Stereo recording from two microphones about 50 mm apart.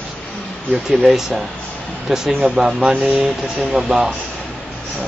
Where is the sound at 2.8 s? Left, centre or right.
Centre.